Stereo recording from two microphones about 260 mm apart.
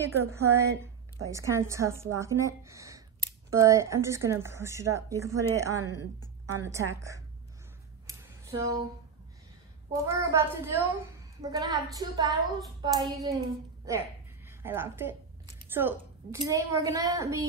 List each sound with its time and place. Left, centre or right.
0.0 s a woman's voice: centre
8.1 s a sound: centre
10.0 s a woman's voice: centre
14.6 s a woman's voice: centre